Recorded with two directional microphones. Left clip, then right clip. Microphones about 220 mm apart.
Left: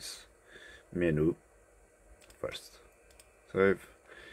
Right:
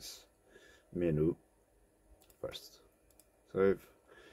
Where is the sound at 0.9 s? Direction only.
10° left (ahead or behind).